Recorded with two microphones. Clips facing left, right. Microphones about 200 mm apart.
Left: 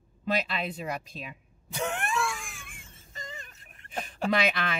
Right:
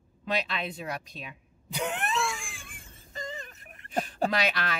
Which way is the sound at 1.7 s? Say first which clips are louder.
Even; 20° right (ahead or behind).